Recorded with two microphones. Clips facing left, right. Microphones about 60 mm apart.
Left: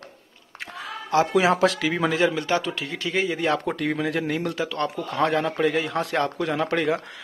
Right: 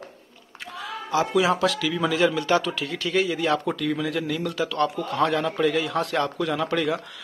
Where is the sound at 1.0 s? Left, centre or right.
Left.